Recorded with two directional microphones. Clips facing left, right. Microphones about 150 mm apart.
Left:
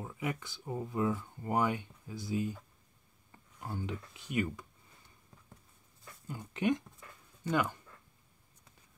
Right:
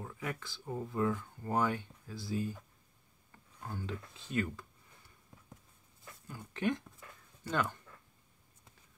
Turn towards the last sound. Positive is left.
turn(degrees=10)  # may be behind; listen again after turning